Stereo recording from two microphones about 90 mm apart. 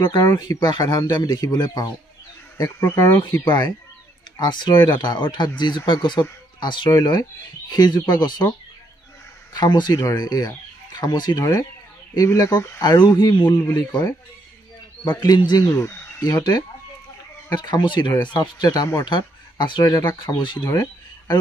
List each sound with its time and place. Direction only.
0.0 s speech: 45° left (ahead or behind)
3.2 s speech: 55° left (ahead or behind)
6.9 s speech: 45° left (ahead or behind)
12.2 s speech: 35° left (ahead or behind)
12.8 s speech: 50° left (ahead or behind)
15.7 s speech: 30° left (ahead or behind); by 19.8 s 60° left (ahead or behind)
19.8 s speech: 45° left (ahead or behind)
20.7 s a sound: 40° left (ahead or behind)